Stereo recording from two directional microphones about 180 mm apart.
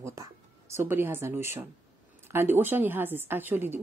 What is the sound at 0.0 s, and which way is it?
Speech, 15° right (ahead or behind).